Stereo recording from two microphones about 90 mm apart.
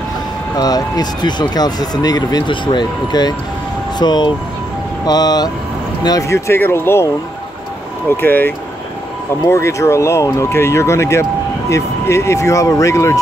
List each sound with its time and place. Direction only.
0.6 s speech: 45° left (ahead or behind)
2.5 s speech: 60° left (ahead or behind); by 7.1 s 25° left (ahead or behind)
8.2 s speech: 25° left (ahead or behind)